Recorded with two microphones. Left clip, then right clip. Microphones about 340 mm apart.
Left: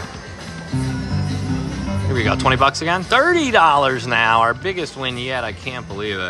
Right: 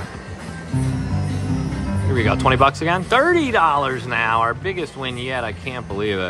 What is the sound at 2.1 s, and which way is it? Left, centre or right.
Speech, centre.